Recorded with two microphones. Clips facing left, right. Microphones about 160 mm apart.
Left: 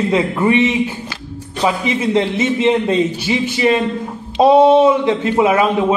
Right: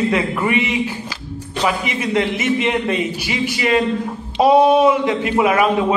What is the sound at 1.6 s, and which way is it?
A man's voice, 30° left (ahead or behind).